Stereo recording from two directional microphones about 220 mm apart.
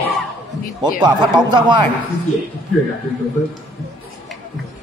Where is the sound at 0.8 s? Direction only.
20° right (ahead or behind).